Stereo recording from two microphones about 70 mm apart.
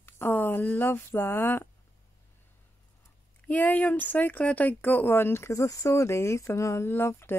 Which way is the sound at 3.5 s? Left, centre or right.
Left.